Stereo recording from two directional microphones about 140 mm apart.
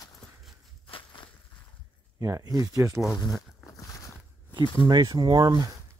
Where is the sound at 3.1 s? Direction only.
25° left (ahead or behind).